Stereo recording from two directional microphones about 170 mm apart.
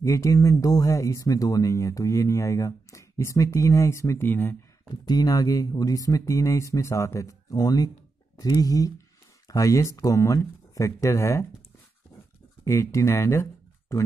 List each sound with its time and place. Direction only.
0.0 s speech: 20° left (ahead or behind)
12.6 s speech: 15° left (ahead or behind)